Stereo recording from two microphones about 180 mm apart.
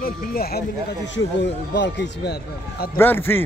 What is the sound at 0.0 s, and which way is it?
Speech, 55° left (ahead or behind).